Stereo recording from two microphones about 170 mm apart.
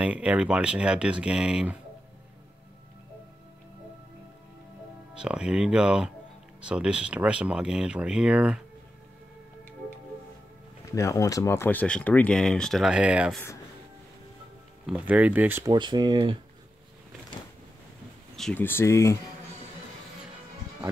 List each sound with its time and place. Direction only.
0.0 s speech: 5° right (ahead or behind)
5.1 s speech: 5° right (ahead or behind)
10.9 s speech: 20° left (ahead or behind); by 13.4 s 5° right (ahead or behind)
14.9 s speech: 10° right (ahead or behind)
15.7 s speech: 25° right (ahead or behind)
18.3 s speech: 5° left (ahead or behind)